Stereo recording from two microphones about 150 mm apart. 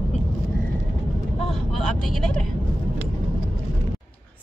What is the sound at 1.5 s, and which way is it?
Vehicle, 5° left (ahead or behind).